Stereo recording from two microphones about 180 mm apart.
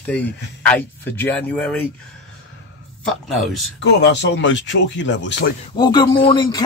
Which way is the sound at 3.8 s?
75° left (ahead or behind).